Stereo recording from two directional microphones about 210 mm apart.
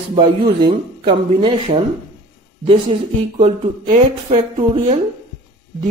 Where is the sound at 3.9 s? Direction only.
30° right (ahead or behind).